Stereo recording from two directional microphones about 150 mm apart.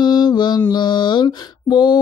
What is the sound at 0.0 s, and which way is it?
Mantra, 25° left (ahead or behind).